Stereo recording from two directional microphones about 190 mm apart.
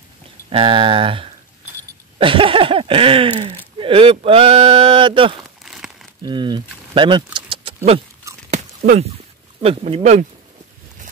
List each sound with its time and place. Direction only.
0.5 s speech: 30° right (ahead or behind)
5.6 s crumpling: centre (ahead or behind)
6.2 s speech: 25° right (ahead or behind)
7.3 s keys jangling: 25° right (ahead or behind)
8.5 s a sound: 40° right (ahead or behind)
9.6 s speech: 30° right (ahead or behind)